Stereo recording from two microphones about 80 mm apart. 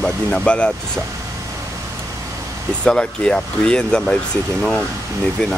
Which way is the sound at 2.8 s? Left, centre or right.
Centre.